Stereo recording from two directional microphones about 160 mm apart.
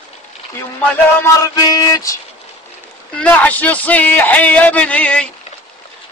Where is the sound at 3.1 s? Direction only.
10° left (ahead or behind).